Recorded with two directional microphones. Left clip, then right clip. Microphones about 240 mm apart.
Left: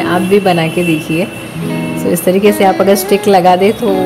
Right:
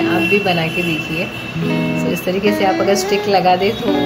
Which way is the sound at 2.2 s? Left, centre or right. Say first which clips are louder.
Left 7 dB; left.